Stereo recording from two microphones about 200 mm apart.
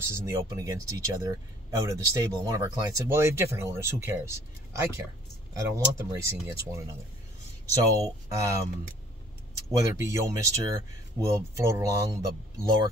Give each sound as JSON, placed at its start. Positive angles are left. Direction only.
{"t": 0.0, "sound": "speech", "side_deg": -15}
{"t": 9.7, "sound": "speech", "side_deg": -15}